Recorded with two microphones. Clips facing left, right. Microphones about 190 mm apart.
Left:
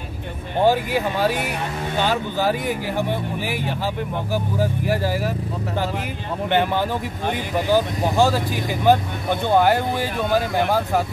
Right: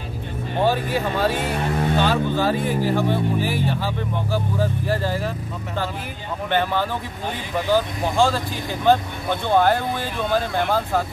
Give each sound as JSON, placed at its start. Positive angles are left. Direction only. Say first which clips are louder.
{"t": 0.7, "sound": "speech", "louder": "left 3 dB", "side_deg": 15}
{"t": 6.5, "sound": "speech", "louder": "left 2 dB", "side_deg": 15}